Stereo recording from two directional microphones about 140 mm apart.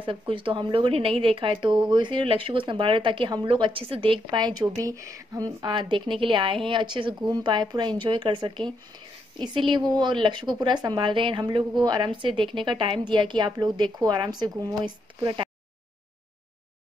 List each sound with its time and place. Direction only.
0.0 s speech: 40° right (ahead or behind)